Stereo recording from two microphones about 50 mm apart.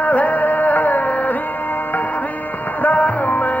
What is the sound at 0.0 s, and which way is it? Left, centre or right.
Music, left.